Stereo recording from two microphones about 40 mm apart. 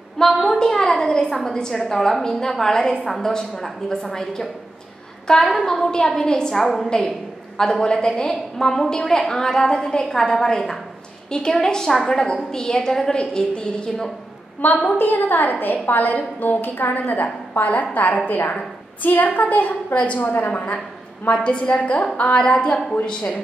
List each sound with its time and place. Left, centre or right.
0.2 s a sound: centre
0.6 s a sound: centre
1.4 s a woman's voice: centre
14.6 s a woman's voice: left
21.3 s a woman's voice: left
22.1 s a woman's voice: left
22.4 s a woman's voice: left